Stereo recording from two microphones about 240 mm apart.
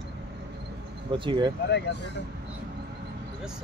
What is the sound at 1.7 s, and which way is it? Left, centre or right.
Speech, left.